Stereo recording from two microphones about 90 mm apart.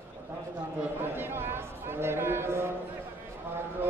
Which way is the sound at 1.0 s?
25° right (ahead or behind).